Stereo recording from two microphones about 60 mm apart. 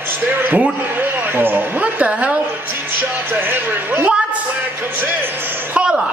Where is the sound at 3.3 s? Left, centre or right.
Right.